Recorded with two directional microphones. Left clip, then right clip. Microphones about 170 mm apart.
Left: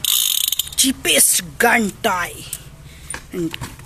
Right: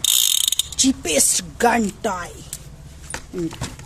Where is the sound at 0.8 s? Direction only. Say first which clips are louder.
Left 5 dB; centre (ahead or behind).